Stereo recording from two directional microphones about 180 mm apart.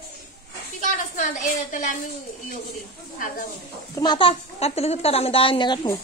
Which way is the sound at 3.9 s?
25° left (ahead or behind).